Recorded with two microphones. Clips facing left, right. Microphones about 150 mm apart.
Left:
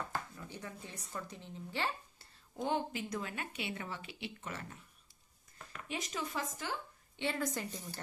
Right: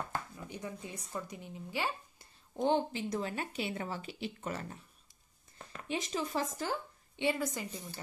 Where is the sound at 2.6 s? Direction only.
30° right (ahead or behind).